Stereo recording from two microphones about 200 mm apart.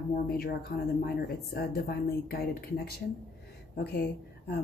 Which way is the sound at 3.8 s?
55° left (ahead or behind).